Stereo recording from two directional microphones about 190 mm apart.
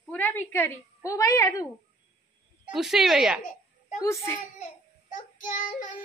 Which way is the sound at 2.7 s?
Centre (ahead or behind).